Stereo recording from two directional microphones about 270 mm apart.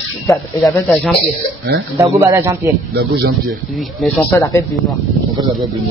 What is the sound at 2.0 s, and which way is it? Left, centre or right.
Speech, centre.